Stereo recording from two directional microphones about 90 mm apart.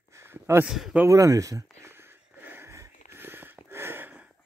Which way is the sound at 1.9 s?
25° right (ahead or behind).